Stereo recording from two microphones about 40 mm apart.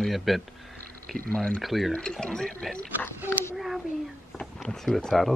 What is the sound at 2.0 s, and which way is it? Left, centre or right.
Speech, centre.